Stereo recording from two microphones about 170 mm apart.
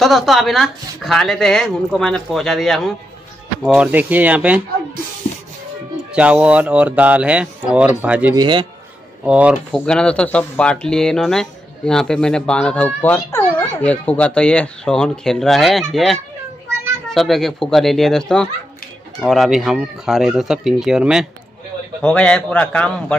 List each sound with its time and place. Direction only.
0.0 s speech: centre (ahead or behind)
6.1 s speech: 5° right (ahead or behind)
8.4 s a man's voice: 30° right (ahead or behind)
9.2 s speech: 5° right (ahead or behind)